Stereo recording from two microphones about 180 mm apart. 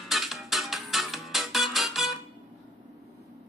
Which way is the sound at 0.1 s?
Centre (ahead or behind).